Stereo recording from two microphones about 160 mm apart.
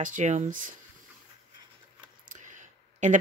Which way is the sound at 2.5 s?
50° right (ahead or behind).